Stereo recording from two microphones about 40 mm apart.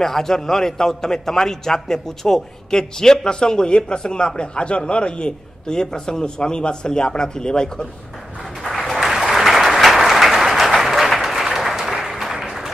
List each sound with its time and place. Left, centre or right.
0.0 s a man's voice: centre
8.9 s applause: centre